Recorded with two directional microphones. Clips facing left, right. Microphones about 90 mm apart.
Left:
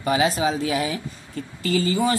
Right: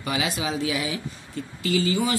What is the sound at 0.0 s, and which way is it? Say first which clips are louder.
Speech: left 7 dB; 35° left (ahead or behind).